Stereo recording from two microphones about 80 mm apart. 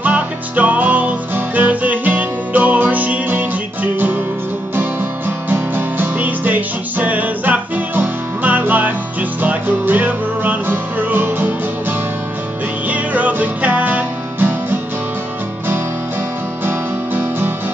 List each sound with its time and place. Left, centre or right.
0.0 s music: right
12.8 s music: centre
16.6 s guitar: right